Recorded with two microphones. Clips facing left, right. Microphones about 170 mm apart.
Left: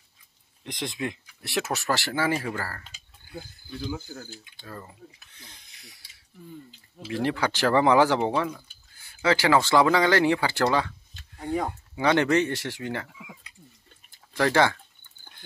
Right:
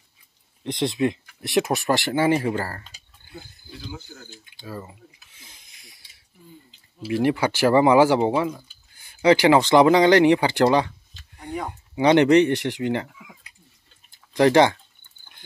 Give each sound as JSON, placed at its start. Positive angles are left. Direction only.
{"t": 0.7, "sound": "speech", "side_deg": -20}
{"t": 4.6, "sound": "speech", "side_deg": -5}
{"t": 7.1, "sound": "speech", "side_deg": -10}